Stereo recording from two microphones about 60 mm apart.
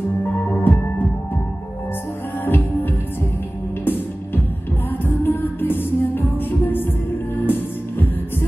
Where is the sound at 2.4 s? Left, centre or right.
Left.